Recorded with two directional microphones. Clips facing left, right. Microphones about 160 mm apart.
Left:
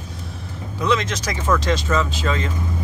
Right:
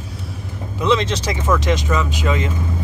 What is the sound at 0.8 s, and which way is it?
Speech, 30° right (ahead or behind).